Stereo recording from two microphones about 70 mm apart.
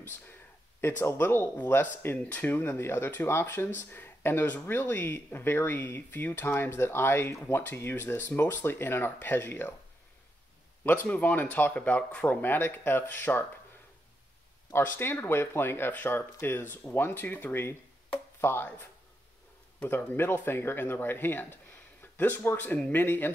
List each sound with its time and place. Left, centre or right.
0.0 s speech: left
10.8 s speech: left
14.7 s speech: left